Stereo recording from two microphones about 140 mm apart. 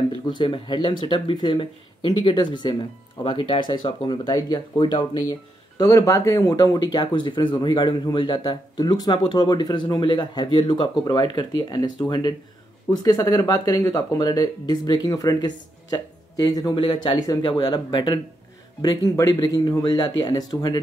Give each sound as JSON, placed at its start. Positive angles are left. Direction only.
{"t": 0.3, "sound": "speech", "side_deg": 35}